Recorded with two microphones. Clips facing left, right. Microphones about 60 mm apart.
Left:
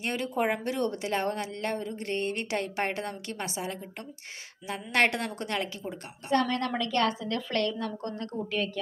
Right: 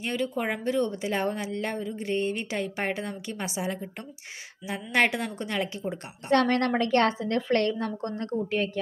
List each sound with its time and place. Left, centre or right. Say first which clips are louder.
0.0 s a woman's voice: even; centre
6.3 s a woman's voice: right 4 dB; right
6.8 s a woman's voice: right 4 dB; right